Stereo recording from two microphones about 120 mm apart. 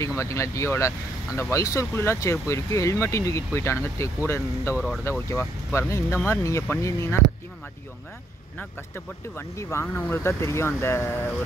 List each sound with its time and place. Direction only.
0.0 s speech: 25° left (ahead or behind)
8.5 s speech: 20° left (ahead or behind)